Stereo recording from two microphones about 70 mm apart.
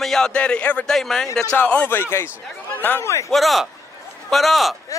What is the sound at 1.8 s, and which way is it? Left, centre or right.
Speech, left.